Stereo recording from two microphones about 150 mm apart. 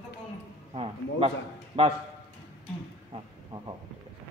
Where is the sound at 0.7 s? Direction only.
40° right (ahead or behind).